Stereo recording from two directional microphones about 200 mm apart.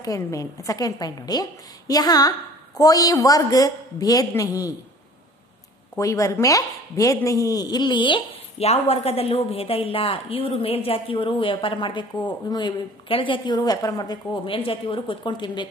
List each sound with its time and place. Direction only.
0.0 s a woman's voice: 15° left (ahead or behind)
5.9 s speech: 15° left (ahead or behind)